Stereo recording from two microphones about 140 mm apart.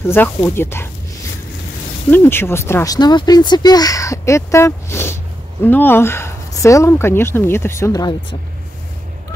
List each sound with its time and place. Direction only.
0.0 s speech: 15° left (ahead or behind)
2.0 s speech: 15° left (ahead or behind)